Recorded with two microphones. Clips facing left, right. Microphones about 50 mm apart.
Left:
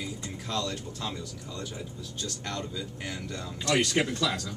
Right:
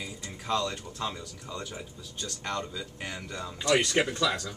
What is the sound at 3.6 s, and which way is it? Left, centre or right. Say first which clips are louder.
Speech: right 1 dB; centre.